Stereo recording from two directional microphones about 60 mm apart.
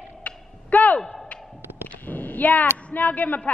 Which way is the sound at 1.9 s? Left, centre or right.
Left.